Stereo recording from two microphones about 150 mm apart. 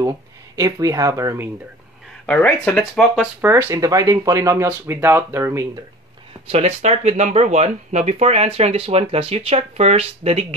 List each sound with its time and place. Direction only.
0.6 s speech: 25° right (ahead or behind)
2.2 s speech: 10° left (ahead or behind)
3.3 s speech: 15° right (ahead or behind)
6.4 s speech: 45° right (ahead or behind)